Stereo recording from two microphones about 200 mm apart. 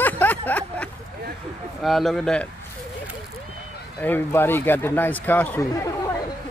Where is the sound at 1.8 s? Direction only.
Centre (ahead or behind).